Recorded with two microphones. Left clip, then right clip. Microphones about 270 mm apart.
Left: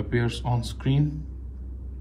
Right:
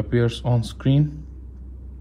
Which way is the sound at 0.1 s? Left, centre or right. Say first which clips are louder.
Right 5 dB; right.